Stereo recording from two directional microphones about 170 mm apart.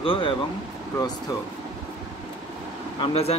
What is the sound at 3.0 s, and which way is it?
Speech, 35° left (ahead or behind).